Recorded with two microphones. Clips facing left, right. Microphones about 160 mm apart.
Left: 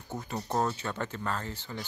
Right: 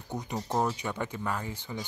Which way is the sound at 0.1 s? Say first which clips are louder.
Right 1 dB; 15° right (ahead or behind).